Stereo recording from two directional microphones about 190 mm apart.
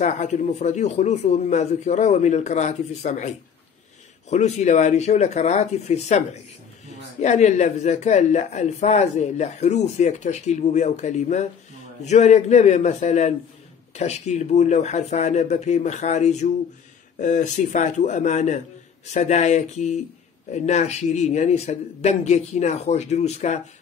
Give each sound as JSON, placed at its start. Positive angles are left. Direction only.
{"t": 0.0, "sound": "speech", "side_deg": 40}